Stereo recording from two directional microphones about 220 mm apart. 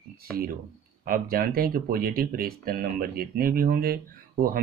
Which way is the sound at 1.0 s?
40° right (ahead or behind).